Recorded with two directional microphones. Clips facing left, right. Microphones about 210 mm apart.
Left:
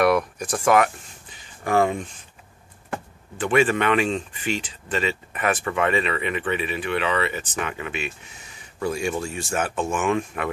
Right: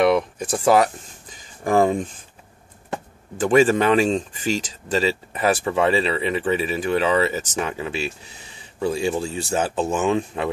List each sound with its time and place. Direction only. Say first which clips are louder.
0.0 s speech: right 2 dB; 25° right (ahead or behind)
3.4 s speech: right 4 dB; 35° right (ahead or behind)